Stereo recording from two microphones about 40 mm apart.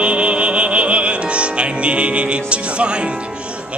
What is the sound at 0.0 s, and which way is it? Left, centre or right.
Music, right.